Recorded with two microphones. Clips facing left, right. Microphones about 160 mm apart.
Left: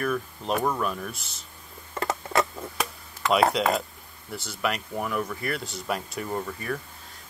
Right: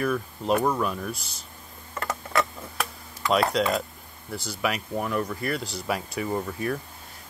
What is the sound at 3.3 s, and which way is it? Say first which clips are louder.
Speech: left 1 dB; centre (ahead or behind).